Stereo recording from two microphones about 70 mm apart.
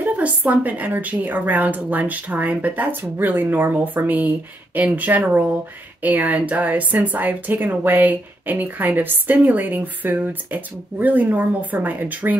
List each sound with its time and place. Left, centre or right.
0.0 s speech: right